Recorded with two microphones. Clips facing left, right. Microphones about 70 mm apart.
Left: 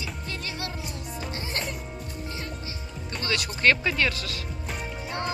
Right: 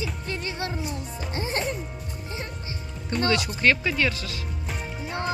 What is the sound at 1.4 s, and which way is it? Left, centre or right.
Music, right.